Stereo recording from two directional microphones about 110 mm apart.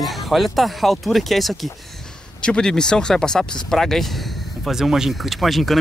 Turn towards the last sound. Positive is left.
turn(degrees=0)  # may be behind; listen again after turning